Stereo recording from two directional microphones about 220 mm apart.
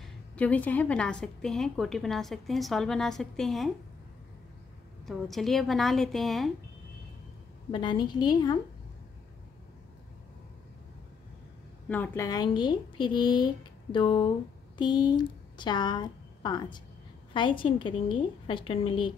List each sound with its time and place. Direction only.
0.0 s a woman's voice: 5° left (ahead or behind)
5.0 s a woman's voice: centre (ahead or behind)
7.7 s a woman's voice: 20° left (ahead or behind)
11.9 s a woman's voice: 10° left (ahead or behind)